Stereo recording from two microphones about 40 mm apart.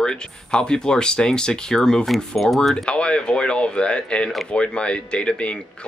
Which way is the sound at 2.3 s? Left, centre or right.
Centre.